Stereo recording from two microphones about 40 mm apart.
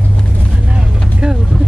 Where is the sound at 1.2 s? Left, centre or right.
Centre.